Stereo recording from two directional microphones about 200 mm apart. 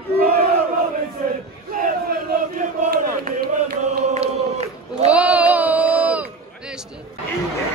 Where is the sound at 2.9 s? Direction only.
50° right (ahead or behind).